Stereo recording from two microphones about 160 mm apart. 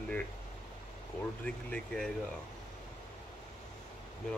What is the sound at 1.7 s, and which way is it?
Speech, 5° left (ahead or behind).